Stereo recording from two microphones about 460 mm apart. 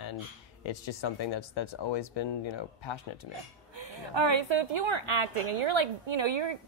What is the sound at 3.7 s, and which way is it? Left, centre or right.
A woman's voice, right.